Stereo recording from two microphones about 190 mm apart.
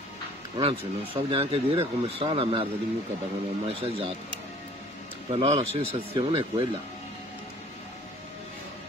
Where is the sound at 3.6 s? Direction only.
30° right (ahead or behind).